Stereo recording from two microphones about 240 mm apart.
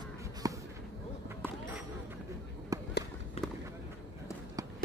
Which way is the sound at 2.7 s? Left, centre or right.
Centre.